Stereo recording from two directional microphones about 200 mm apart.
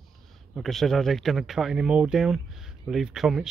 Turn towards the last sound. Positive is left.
turn(degrees=0)  # may be behind; listen again after turning